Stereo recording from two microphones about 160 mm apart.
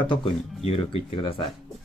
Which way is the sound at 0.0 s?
30° left (ahead or behind).